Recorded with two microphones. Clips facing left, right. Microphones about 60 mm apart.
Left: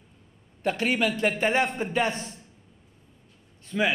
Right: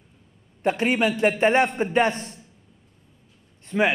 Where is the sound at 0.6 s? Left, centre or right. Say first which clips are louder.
Right 4 dB; centre.